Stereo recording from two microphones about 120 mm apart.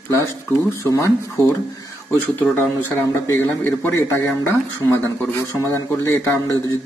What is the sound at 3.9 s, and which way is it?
Speech, 20° left (ahead or behind).